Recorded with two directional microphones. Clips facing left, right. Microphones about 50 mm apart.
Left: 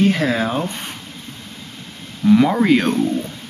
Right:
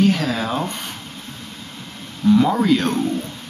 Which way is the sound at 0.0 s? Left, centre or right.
Left.